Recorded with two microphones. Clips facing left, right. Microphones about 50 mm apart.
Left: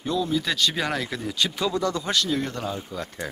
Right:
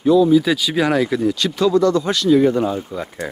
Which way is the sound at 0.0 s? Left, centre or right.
Centre.